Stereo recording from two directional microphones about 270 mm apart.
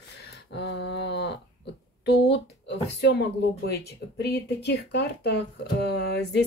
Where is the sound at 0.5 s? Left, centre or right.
Left.